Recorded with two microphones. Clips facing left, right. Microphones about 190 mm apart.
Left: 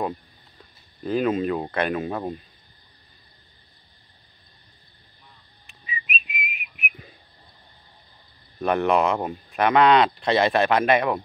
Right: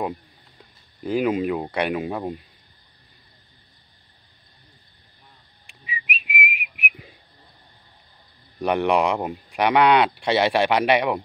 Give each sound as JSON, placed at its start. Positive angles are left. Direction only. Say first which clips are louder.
{"t": 1.0, "sound": "speech", "louder": "right 1 dB", "side_deg": -10}
{"t": 5.7, "sound": "whistling", "louder": "even", "side_deg": -15}
{"t": 6.0, "sound": "whistling", "louder": "right 8 dB", "side_deg": -80}
{"t": 6.9, "sound": "a sound", "louder": "right 1 dB", "side_deg": -15}
{"t": 8.5, "sound": "speech", "louder": "even", "side_deg": -15}